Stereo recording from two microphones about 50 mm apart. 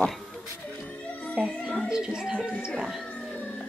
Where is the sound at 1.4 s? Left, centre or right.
Centre.